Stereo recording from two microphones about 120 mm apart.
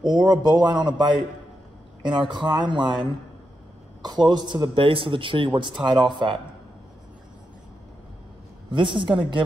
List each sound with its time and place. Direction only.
0.0 s a man's voice: 35° right (ahead or behind)
8.6 s a woman's voice: 45° right (ahead or behind)